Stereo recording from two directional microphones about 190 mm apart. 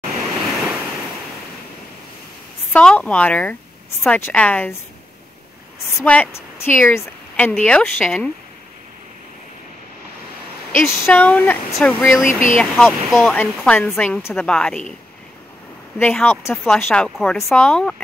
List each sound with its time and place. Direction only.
2.7 s speech: 5° left (ahead or behind)
5.9 s speech: 10° left (ahead or behind)
10.7 s speech: 10° left (ahead or behind)
12.3 s speech: 45° left (ahead or behind)
12.5 s speech: 5° left (ahead or behind)
16.0 s speech: 5° left (ahead or behind)